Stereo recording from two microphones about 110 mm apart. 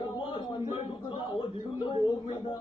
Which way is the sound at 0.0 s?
50° left (ahead or behind).